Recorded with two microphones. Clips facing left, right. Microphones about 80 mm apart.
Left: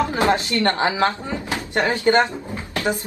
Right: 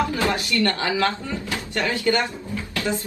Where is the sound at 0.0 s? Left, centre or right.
Left.